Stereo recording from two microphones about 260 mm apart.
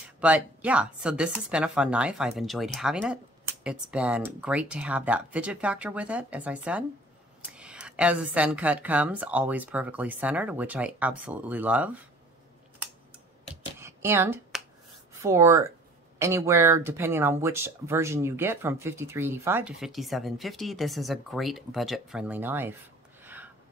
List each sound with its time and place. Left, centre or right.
0.2 s speech: centre
13.7 s a sound: centre
15.2 s speech: centre
23.2 s gasp: centre